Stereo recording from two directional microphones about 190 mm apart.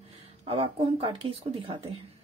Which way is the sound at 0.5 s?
30° right (ahead or behind).